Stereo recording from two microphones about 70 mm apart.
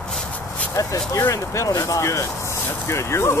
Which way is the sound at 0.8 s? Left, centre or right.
Left.